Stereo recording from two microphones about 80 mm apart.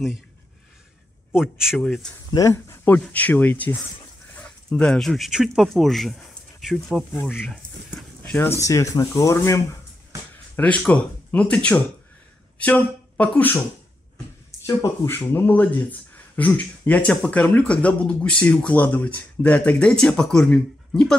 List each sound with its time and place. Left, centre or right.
1.3 s a man's voice: centre
1.8 s speech: centre
2.5 s speech: left
3.0 s speech: centre
8.2 s speech: left
8.5 s speech: left
10.6 s speech: centre
15.0 s speech: left; by 21.1 s centre